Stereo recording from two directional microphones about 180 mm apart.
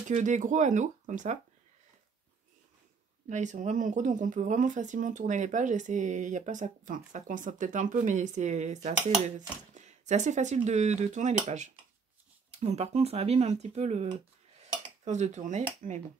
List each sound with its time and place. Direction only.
0.1 s speech: 45° right (ahead or behind)
3.3 s speech: 40° right (ahead or behind)
14.6 s dishes: 40° right (ahead or behind)